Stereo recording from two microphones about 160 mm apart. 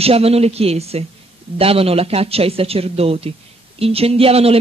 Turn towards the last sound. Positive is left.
turn(degrees=-40)  # may be behind; listen again after turning